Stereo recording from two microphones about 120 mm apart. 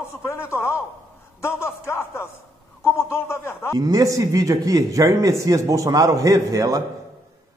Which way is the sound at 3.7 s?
30° right (ahead or behind).